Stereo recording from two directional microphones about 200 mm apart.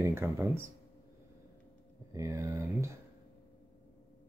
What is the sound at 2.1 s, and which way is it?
Speech, 15° right (ahead or behind).